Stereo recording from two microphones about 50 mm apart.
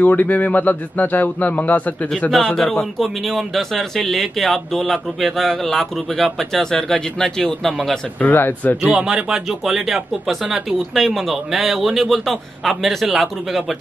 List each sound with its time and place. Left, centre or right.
0.0 s a man's voice: left
2.3 s a man's voice: centre
8.2 s speech: left
8.9 s speech: centre